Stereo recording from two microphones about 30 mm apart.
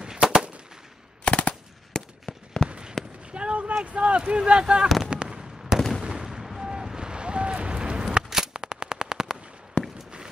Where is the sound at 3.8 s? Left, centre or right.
Right.